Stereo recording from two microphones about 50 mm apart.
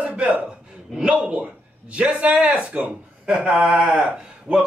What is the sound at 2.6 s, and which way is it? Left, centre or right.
Speech, right.